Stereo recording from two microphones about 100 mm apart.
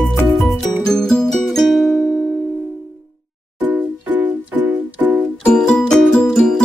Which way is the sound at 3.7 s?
15° right (ahead or behind).